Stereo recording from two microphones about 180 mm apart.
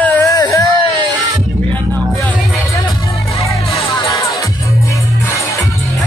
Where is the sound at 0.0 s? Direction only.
15° left (ahead or behind).